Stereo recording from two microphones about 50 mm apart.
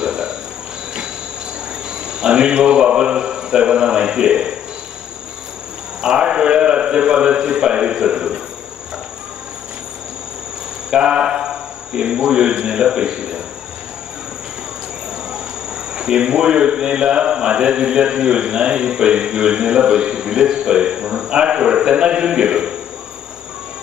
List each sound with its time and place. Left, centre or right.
0.0 s cricket: centre
2.0 s a man's voice: centre
5.9 s a man's voice: centre
10.9 s speech: centre
15.9 s a man's voice: centre